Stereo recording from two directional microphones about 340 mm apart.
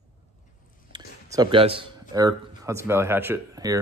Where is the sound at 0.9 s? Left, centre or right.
Centre.